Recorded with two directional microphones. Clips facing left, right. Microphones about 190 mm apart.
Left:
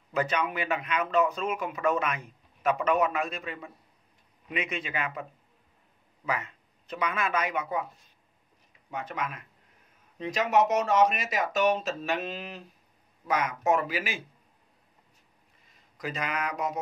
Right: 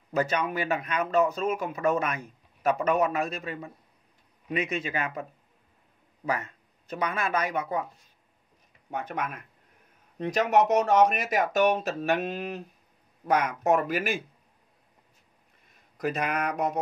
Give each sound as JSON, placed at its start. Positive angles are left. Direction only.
{"t": 0.1, "sound": "speech", "side_deg": -40}
{"t": 6.2, "sound": "speech", "side_deg": -45}
{"t": 8.9, "sound": "speech", "side_deg": -60}
{"t": 16.0, "sound": "speech", "side_deg": -60}